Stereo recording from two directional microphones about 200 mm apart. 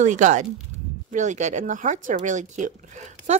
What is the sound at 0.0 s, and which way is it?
Speech, 40° right (ahead or behind).